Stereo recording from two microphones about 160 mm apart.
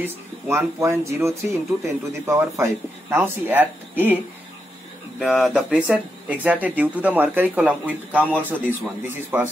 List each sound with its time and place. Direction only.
0.0 s speech: 15° right (ahead or behind)
5.2 s speech: 5° right (ahead or behind)